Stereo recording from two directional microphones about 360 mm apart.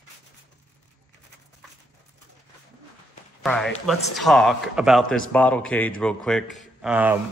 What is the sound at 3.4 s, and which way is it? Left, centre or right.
Speech, centre.